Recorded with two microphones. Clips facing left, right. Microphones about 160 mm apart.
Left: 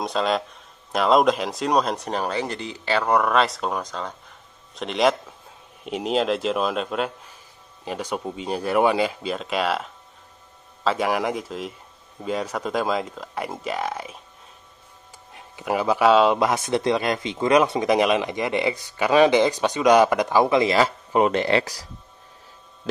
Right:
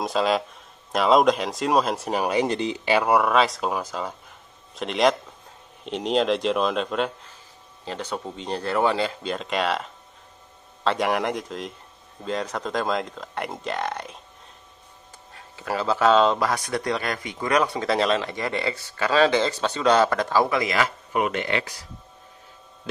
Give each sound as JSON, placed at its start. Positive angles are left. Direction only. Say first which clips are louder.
{"t": 0.0, "sound": "speech", "louder": "right 1 dB", "side_deg": 0}
{"t": 15.3, "sound": "speech", "louder": "left 3 dB", "side_deg": 15}
{"t": 16.3, "sound": "a man's voice", "louder": "left 3 dB", "side_deg": 20}